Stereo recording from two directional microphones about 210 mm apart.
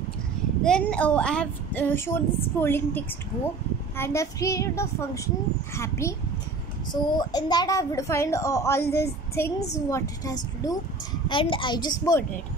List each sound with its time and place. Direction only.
0.7 s a woman's voice: 5° left (ahead or behind)